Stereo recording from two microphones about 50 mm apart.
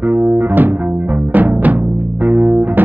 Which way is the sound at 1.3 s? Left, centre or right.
Right.